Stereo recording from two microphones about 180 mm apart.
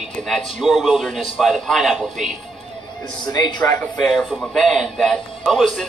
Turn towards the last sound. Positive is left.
turn(degrees=0)  # may be behind; listen again after turning